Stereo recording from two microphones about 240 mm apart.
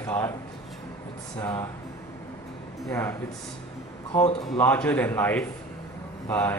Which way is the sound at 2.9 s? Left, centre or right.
Centre.